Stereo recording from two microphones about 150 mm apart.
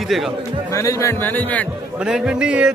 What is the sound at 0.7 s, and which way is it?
A man's voice, 20° left (ahead or behind).